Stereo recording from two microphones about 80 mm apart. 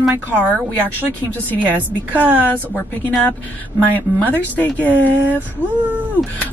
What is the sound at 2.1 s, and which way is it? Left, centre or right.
Speech, right.